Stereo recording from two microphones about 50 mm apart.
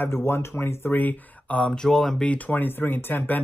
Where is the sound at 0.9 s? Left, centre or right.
Left.